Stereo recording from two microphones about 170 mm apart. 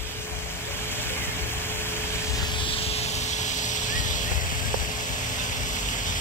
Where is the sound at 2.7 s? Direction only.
40° left (ahead or behind).